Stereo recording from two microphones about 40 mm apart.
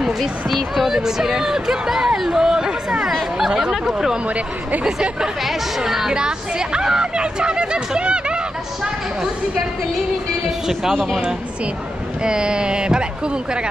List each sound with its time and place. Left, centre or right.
0.2 s speech: centre
3.3 s chatter: centre
3.8 s speech: centre
5.8 s speech: centre
6.1 s speech: centre
10.7 s speech: centre
12.2 s speech: right